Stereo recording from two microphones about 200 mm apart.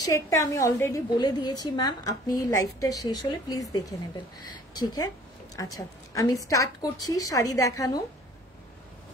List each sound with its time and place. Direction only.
0.0 s a woman's voice: 15° left (ahead or behind)
4.7 s a woman's voice: 20° left (ahead or behind)